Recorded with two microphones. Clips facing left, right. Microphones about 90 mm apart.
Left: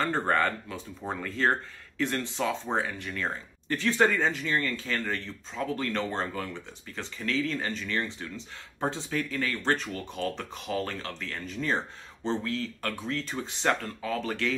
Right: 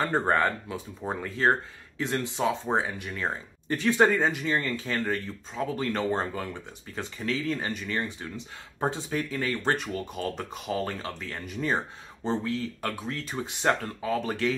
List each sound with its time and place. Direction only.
0.0 s speech: 15° right (ahead or behind)